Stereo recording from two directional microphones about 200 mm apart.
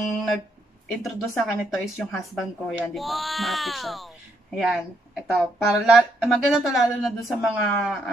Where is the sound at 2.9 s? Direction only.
Centre (ahead or behind).